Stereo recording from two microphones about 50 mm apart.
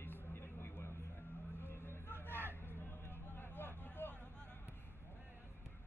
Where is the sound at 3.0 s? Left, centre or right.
Left.